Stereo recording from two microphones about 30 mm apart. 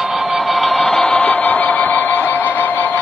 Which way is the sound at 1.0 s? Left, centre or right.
Left.